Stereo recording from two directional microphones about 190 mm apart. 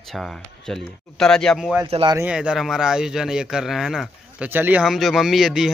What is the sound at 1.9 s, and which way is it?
Speech, 30° right (ahead or behind).